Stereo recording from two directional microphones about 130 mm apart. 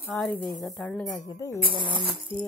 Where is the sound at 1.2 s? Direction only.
25° left (ahead or behind).